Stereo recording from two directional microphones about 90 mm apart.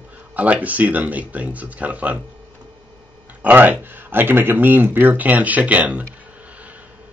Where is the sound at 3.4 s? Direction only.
20° right (ahead or behind).